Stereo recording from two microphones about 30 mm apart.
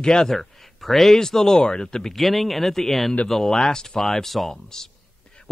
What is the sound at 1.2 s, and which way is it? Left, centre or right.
Speech, centre.